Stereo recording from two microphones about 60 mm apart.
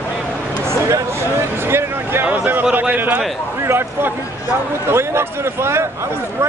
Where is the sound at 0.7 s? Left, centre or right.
Right.